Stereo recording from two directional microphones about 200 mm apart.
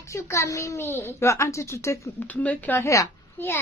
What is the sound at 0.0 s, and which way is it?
A child's voice, 15° left (ahead or behind).